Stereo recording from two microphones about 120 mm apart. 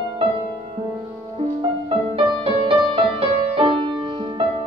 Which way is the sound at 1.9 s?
50° right (ahead or behind).